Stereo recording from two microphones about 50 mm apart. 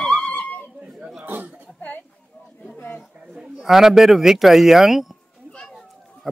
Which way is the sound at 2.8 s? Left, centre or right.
Left.